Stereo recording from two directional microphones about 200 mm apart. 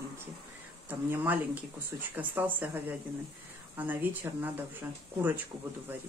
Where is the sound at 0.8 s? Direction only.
10° right (ahead or behind).